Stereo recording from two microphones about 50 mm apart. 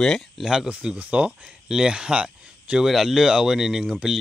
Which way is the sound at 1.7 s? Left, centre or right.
Centre.